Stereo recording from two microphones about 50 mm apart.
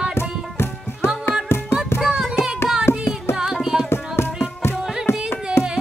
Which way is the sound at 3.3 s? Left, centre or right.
Left.